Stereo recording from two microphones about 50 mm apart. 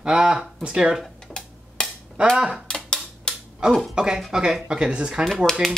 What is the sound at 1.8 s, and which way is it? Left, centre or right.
Finger snapping, centre.